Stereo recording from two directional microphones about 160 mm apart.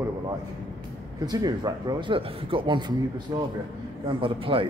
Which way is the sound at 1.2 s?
25° right (ahead or behind).